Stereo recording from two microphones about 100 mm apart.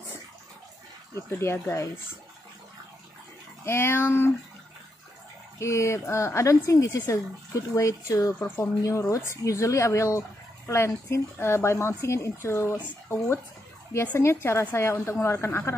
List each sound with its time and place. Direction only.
1.1 s speech: 25° left (ahead or behind)
3.6 s speech: 25° left (ahead or behind)
5.6 s speech: 30° left (ahead or behind)
8.4 s speech: 20° left (ahead or behind)